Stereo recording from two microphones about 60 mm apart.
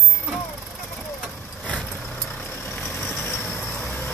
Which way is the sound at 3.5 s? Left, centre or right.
Centre.